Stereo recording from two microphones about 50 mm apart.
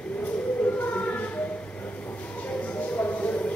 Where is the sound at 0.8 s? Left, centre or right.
Left.